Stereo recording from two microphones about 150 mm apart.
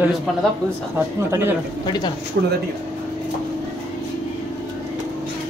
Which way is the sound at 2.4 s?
90° right.